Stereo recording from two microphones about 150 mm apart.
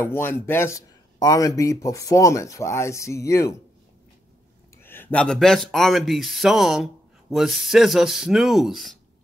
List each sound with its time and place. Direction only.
0.0 s speech: 15° left (ahead or behind)
4.8 s speech: 15° left (ahead or behind)